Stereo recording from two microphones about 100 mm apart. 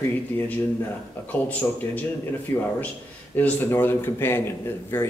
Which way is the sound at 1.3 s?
15° left (ahead or behind).